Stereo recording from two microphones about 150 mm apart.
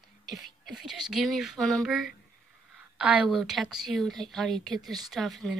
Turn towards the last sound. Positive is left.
turn(degrees=0)  # may be behind; listen again after turning